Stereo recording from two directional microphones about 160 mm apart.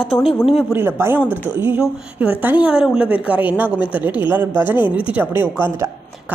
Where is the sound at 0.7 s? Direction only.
15° right (ahead or behind).